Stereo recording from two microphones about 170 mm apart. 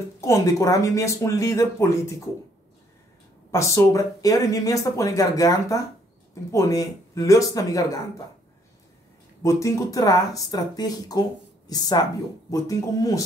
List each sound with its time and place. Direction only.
0.2 s speech: 20° left (ahead or behind)
3.5 s speech: 15° left (ahead or behind)
9.4 s speech: 20° left (ahead or behind)